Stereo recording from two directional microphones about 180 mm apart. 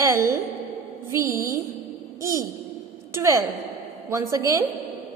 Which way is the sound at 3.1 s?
15° right (ahead or behind).